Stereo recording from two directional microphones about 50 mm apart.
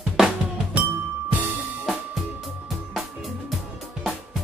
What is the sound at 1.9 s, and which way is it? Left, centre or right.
Music, centre.